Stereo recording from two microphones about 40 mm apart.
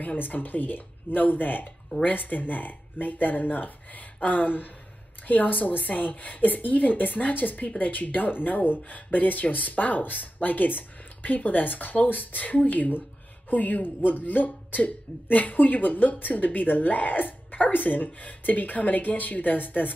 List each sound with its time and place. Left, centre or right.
0.0 s speech: left